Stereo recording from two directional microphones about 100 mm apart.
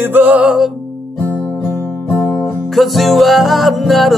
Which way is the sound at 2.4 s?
Centre (ahead or behind).